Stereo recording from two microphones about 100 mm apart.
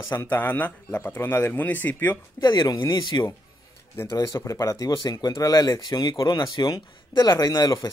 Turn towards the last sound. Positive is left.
turn(degrees=35)  # may be behind; listen again after turning